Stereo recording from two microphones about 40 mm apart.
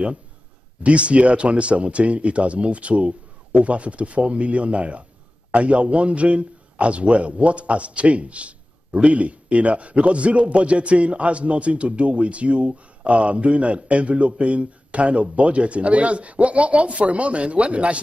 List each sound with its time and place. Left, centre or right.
0.8 s a man's voice: right